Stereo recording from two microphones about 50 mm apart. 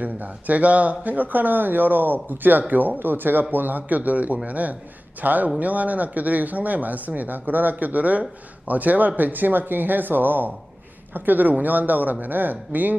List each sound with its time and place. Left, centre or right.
0.0 s speech: right